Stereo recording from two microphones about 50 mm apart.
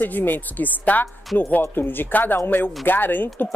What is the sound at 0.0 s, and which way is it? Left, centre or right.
A man's voice, left.